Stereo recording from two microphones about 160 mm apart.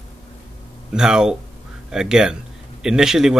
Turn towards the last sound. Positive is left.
turn(degrees=-5)  # may be behind; listen again after turning